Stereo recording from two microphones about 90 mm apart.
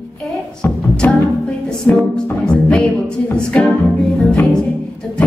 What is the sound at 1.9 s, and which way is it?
Music, 10° left (ahead or behind).